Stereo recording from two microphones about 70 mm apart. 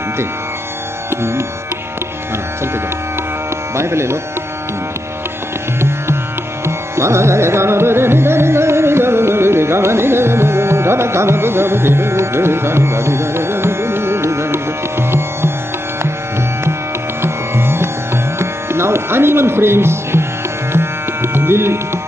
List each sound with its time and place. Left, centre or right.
1.1 s music: right
3.7 s speech: right
5.8 s music: right
17.2 s music: right